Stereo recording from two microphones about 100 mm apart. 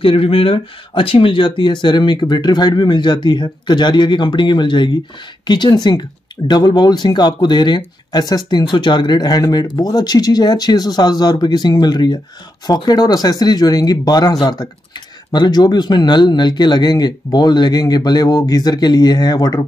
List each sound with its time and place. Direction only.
0.0 s speech: 65° left (ahead or behind); by 19.6 s 40° left (ahead or behind)